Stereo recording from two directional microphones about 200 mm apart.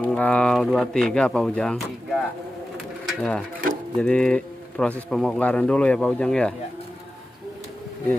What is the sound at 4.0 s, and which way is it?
Speech, 5° left (ahead or behind).